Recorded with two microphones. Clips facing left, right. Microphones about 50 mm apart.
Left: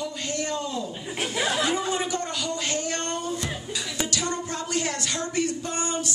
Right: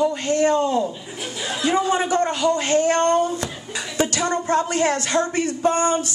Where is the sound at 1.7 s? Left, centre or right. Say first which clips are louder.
Right 7 dB; right.